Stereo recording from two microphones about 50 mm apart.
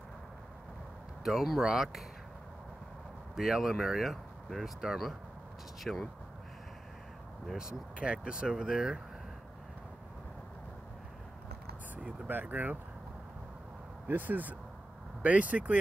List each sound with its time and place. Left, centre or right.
1.2 s speech: centre
3.3 s speech: centre
7.5 s speech: centre
12.3 s speech: right
14.0 s speech: right